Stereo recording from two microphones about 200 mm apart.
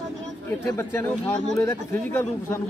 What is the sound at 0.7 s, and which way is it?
Speech, 10° left (ahead or behind).